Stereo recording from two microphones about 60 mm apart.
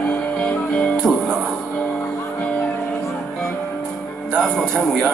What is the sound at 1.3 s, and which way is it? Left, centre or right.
Music, centre.